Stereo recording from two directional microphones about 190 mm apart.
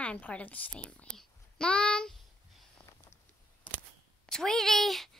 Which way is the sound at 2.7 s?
15° left (ahead or behind).